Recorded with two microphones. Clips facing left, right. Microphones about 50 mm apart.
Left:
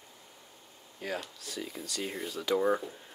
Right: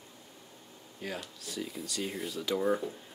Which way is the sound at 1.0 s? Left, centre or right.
Centre.